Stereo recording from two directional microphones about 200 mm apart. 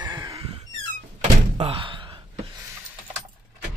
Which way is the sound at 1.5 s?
25° right (ahead or behind).